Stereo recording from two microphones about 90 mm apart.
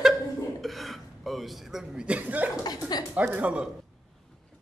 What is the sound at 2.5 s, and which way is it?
Speech, 45° left (ahead or behind).